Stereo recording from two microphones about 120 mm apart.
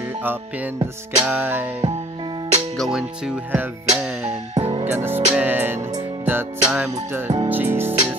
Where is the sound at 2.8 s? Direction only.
5° right (ahead or behind).